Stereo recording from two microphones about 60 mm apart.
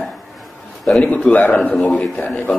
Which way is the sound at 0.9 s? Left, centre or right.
Centre.